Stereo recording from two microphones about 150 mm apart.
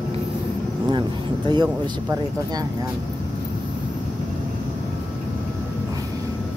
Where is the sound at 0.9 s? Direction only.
30° right (ahead or behind).